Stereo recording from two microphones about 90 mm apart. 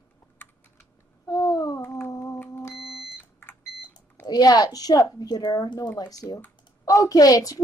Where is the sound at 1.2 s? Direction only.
45° left (ahead or behind).